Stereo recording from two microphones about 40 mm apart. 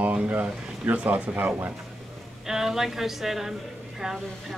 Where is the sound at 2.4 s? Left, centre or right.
Centre.